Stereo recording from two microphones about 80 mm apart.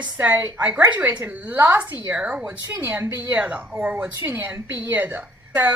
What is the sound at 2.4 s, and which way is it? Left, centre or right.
A woman's voice, right.